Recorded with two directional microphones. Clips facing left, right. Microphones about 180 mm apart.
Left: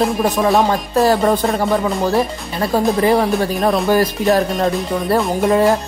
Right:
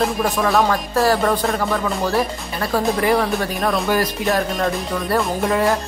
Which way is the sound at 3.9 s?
35° left (ahead or behind).